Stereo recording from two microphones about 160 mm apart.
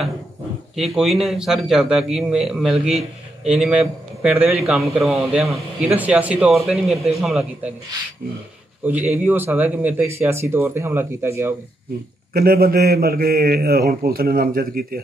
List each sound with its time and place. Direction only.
0.7 s a man's voice: centre (ahead or behind)
8.8 s speech: 10° right (ahead or behind)
12.4 s a man's voice: 70° right (ahead or behind)